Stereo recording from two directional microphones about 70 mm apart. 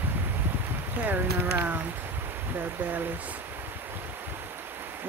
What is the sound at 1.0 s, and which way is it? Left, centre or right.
Speech, right.